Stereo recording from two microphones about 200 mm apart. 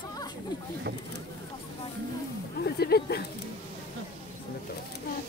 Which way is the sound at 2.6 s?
55° left (ahead or behind).